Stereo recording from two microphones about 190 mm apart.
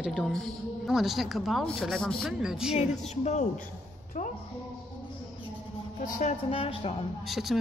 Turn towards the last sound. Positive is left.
turn(degrees=0)  # may be behind; listen again after turning